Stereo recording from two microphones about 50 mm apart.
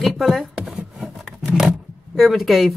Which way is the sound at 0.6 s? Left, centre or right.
Centre.